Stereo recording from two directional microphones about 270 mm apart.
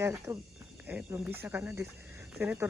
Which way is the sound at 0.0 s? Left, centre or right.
Centre.